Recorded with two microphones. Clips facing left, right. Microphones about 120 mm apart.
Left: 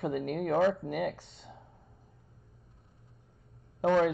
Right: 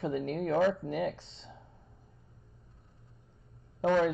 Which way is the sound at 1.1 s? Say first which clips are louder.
Even; 25° right (ahead or behind).